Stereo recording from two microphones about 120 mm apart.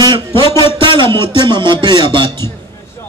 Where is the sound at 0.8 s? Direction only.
45° right (ahead or behind).